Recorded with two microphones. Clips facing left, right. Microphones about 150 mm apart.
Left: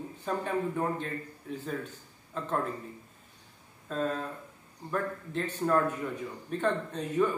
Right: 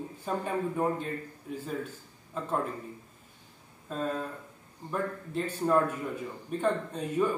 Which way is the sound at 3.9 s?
10° right (ahead or behind).